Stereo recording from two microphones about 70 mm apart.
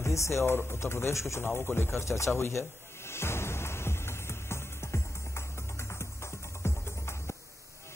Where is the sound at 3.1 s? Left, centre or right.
Left.